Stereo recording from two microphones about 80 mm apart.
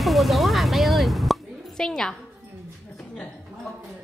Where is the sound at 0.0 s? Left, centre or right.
Centre.